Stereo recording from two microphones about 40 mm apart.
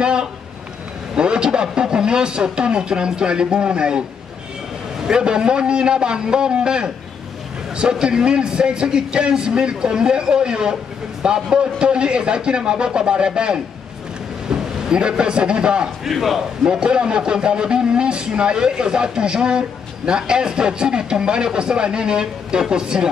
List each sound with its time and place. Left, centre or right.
0.0 s a man's voice: right
5.0 s a man's voice: right
16.0 s a man's voice: centre
16.6 s a man's voice: right